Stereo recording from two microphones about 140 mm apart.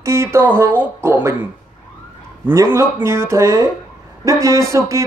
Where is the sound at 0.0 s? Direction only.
20° right (ahead or behind).